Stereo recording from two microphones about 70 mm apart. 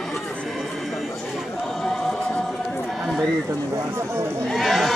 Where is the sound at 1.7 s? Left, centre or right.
Centre.